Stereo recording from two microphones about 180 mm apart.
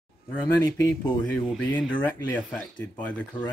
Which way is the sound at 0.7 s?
20° left (ahead or behind).